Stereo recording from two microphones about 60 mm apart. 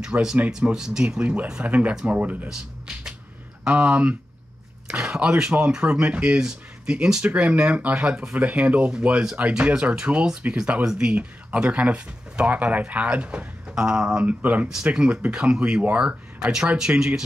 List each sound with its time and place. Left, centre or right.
0.1 s speech: right
0.5 s speech: centre
1.2 s speech: right
3.6 s speech: right
4.8 s speech: centre
8.4 s speech: right
9.2 s speech: centre
14.2 s speech: right